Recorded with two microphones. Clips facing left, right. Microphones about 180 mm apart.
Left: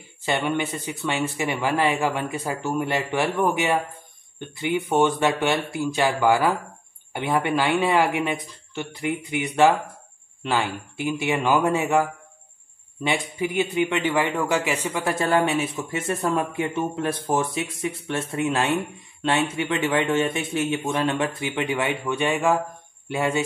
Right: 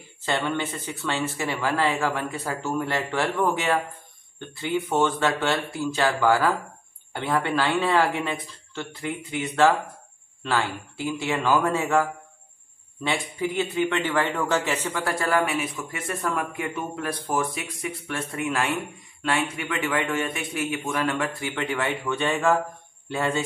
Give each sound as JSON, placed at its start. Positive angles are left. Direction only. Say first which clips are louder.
{"t": 0.2, "sound": "a man's voice", "louder": "left 2 dB", "side_deg": 15}